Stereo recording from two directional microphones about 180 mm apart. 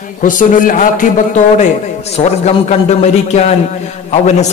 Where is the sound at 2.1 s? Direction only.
40° left (ahead or behind).